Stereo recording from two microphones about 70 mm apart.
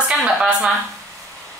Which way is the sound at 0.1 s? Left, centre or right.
Centre.